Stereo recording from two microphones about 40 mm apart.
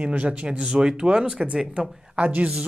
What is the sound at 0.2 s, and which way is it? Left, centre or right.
Speech, right.